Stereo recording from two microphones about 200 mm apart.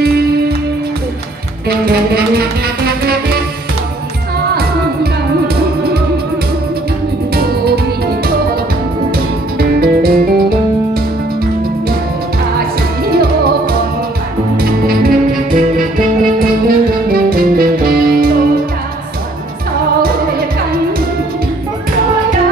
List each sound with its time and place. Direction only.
1.9 s music: 50° right (ahead or behind)
7.3 s music: 50° right (ahead or behind)
9.6 s music: 50° right (ahead or behind)
14.6 s music: 50° right (ahead or behind)